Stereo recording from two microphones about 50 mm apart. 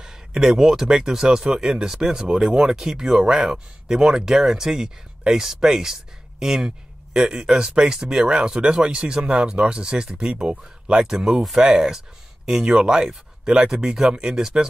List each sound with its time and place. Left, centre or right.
0.0 s speech: centre